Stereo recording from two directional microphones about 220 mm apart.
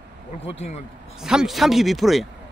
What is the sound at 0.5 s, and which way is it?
Speech, 30° left (ahead or behind).